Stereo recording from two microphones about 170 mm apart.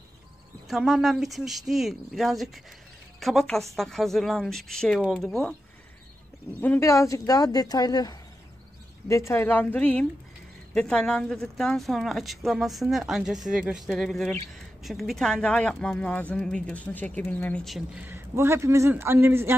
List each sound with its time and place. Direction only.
0.7 s speech: centre (ahead or behind)
6.6 s speech: 15° left (ahead or behind)
17.7 s a man's voice: 10° right (ahead or behind)